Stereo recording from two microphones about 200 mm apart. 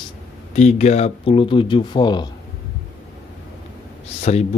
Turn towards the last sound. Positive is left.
turn(degrees=35)  # may be behind; listen again after turning